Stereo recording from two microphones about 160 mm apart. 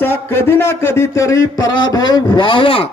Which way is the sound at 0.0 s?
15° left (ahead or behind).